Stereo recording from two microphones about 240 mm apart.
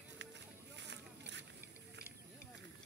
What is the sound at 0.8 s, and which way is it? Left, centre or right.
Boat, right.